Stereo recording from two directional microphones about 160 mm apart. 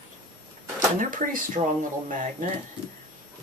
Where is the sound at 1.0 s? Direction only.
55° right (ahead or behind).